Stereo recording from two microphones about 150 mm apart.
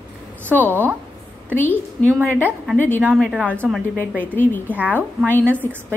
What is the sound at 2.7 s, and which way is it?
A woman's voice, 10° left (ahead or behind).